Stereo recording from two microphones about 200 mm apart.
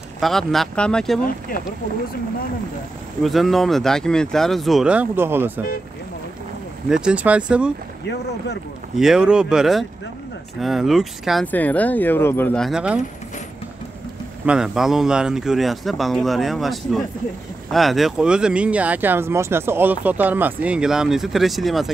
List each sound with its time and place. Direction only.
0.2 s speech: centre (ahead or behind)
1.5 s speech: 45° left (ahead or behind)
3.3 s speech: centre (ahead or behind)
6.9 s speech: 5° right (ahead or behind)
8.9 s speech: 5° right (ahead or behind)
14.4 s speech: 5° right (ahead or behind)